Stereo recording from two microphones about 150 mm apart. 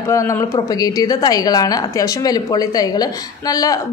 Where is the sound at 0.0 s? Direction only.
20° left (ahead or behind).